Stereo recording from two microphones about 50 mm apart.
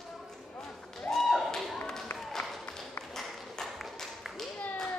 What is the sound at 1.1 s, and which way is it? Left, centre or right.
Tap, centre.